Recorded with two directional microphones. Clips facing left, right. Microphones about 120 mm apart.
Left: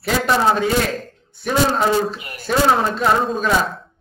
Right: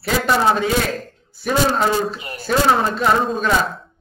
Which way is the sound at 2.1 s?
30° right (ahead or behind).